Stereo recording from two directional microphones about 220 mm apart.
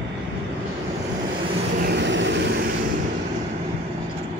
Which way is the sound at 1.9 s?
55° right (ahead or behind).